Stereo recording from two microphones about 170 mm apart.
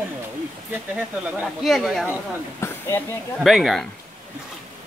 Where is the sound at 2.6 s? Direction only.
15° left (ahead or behind).